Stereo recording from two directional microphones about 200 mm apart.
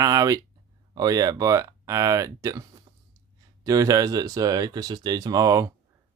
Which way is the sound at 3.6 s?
15° right (ahead or behind).